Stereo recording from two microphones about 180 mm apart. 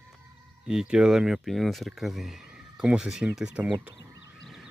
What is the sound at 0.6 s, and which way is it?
Speech, 5° right (ahead or behind).